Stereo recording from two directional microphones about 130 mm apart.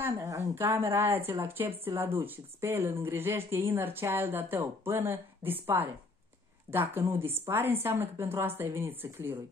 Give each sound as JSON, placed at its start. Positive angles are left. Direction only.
{"t": 0.0, "sound": "a woman's voice", "side_deg": -20}